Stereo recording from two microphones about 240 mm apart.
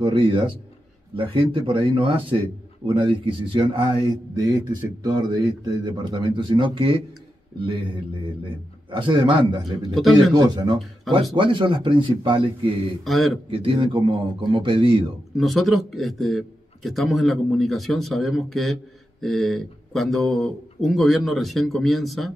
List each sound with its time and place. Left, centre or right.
0.0 s speech: right
8.9 s speech: centre
9.8 s a man's voice: centre
10.3 s speech: centre
13.0 s a man's voice: centre
13.5 s speech: right
15.3 s a man's voice: centre